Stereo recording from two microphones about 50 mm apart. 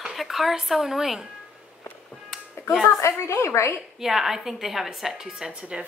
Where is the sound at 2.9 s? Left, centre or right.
Left.